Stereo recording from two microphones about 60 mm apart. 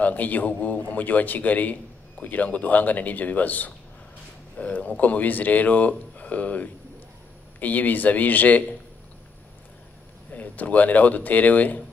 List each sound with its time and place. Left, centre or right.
0.0 s speech: left
10.3 s speech: left